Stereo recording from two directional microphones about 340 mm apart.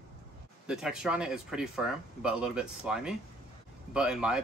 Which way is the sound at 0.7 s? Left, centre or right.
Centre.